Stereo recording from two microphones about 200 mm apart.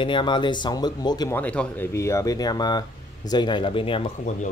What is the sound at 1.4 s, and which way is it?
Speech, 5° left (ahead or behind).